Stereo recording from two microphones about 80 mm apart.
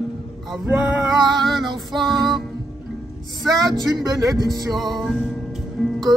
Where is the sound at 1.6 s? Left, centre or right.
Right.